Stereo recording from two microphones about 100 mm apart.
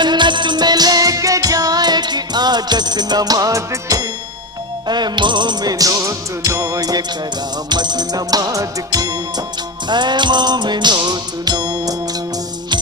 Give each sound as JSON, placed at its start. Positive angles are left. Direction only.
{"t": 0.0, "sound": "music", "side_deg": -50}
{"t": 4.8, "sound": "music", "side_deg": -45}
{"t": 9.8, "sound": "music", "side_deg": -50}